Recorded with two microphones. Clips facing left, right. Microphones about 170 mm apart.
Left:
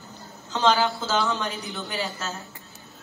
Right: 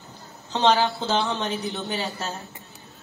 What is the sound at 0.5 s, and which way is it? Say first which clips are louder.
A woman's voice: right 1 dB; 30° right (ahead or behind).